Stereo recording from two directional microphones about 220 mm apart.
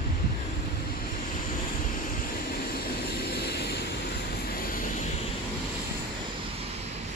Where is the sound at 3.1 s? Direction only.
50° left (ahead or behind).